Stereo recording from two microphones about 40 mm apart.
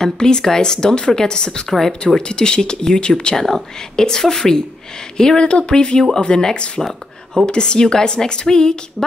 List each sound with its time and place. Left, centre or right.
0.0 s speech: centre
3.3 s speech: centre